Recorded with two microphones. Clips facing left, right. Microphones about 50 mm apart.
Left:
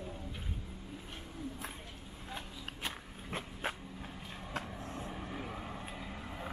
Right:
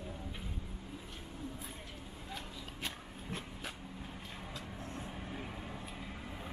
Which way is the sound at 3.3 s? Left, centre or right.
Left.